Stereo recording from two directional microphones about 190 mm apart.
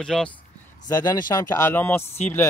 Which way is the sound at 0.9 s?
20° left (ahead or behind).